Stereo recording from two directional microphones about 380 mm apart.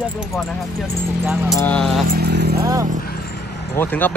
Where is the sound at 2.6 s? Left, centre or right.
Centre.